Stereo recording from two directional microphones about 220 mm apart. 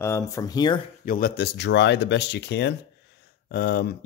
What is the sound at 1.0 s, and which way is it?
Speech, 40° left (ahead or behind).